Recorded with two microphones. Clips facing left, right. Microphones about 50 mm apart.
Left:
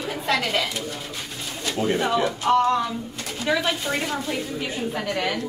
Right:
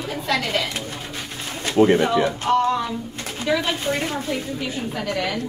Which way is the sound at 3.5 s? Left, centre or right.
Centre.